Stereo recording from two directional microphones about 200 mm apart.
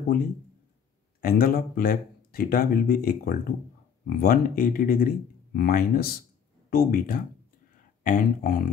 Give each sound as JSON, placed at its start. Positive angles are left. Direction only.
{"t": 1.2, "sound": "speech", "side_deg": 45}